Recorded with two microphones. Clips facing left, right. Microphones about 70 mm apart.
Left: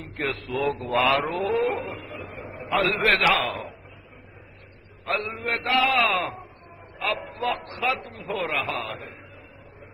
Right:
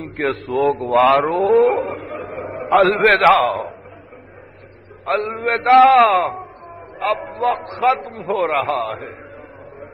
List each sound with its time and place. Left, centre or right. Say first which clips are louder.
0.2 s a man's voice: right 8 dB; right
2.6 s a man's voice: right 10 dB; right
5.0 s a man's voice: right 8 dB; right
6.0 s a man's voice: right 9 dB; right